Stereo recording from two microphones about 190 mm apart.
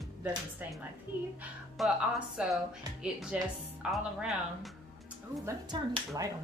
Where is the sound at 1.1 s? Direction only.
10° right (ahead or behind).